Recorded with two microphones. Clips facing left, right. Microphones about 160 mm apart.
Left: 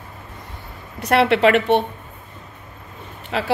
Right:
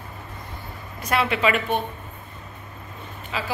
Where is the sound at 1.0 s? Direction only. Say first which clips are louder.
Left 7 dB; 70° left (ahead or behind).